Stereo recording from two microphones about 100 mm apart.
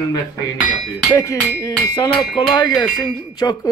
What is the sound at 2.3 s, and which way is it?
Speech, 45° left (ahead or behind).